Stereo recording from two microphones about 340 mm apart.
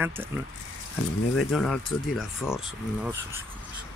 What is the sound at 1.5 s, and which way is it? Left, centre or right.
Speech, centre.